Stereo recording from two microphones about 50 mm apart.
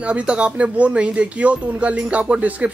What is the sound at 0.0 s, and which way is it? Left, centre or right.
Speech, right.